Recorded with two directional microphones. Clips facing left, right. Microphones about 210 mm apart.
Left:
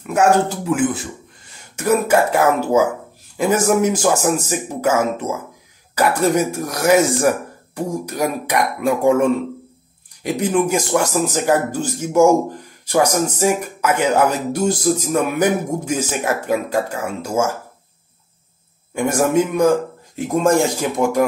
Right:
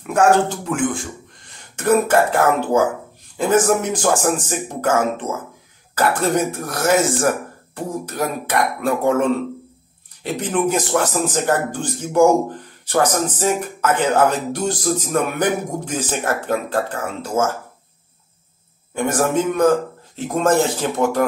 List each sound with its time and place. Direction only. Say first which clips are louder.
0.0 s speech: even; 10° left (ahead or behind)
10.2 s speech: left 2 dB; 10° left (ahead or behind)
18.9 s speech: left 2 dB; 10° left (ahead or behind)